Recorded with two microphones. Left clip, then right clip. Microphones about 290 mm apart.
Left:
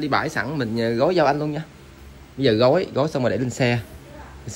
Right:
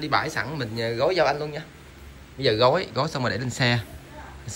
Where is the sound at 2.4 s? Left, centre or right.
Centre.